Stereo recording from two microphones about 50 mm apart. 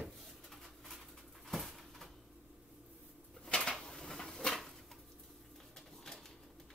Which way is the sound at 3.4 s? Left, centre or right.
Centre.